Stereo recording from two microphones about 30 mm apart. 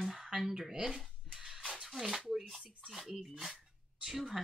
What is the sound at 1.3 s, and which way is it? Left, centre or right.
Music, centre.